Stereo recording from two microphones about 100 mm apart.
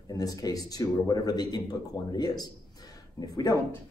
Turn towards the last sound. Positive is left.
turn(degrees=40)  # may be behind; listen again after turning